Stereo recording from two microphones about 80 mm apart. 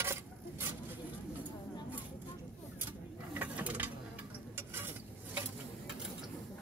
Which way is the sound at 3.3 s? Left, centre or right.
Centre.